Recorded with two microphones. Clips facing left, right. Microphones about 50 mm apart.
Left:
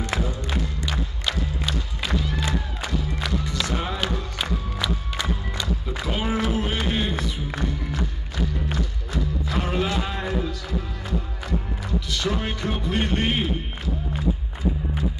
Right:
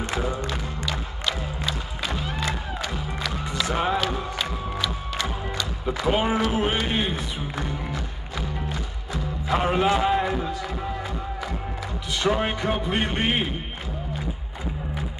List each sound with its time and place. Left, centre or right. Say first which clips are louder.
0.0 s music: right 1 dB; right
2.0 s music: left 1 dB; right
4.4 s music: even; centre
5.9 s a sound: right 7 dB; right
6.5 s music: right 1 dB; right
9.5 s a sound: right 6 dB; right
10.3 s music: even; right
12.1 s music: right 5 dB; right